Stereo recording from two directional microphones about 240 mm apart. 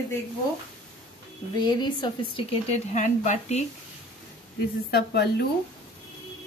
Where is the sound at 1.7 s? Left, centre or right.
Centre.